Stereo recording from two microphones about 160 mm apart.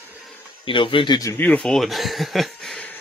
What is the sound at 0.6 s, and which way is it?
Speech, 30° left (ahead or behind).